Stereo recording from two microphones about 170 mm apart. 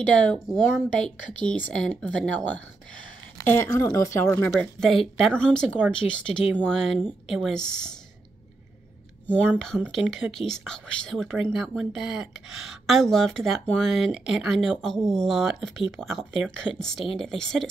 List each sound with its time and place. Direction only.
0.1 s speech: 5° left (ahead or behind)
4.5 s speech: centre (ahead or behind)
9.8 s speech: 5° right (ahead or behind)